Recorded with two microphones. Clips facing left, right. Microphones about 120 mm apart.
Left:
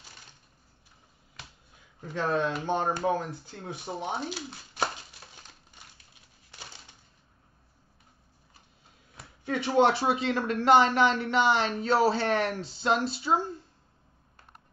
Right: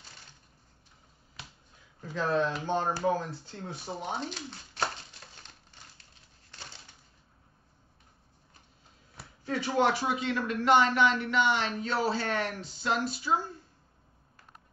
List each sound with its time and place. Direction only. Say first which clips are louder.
2.2 s speech: left 1 dB; 15° left (ahead or behind)
3.5 s chopping: left 2 dB; 15° left (ahead or behind)
9.5 s speech: left 4 dB; 20° left (ahead or behind)